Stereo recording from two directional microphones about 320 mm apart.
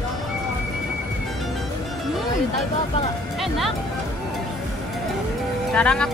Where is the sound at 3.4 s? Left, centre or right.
Centre.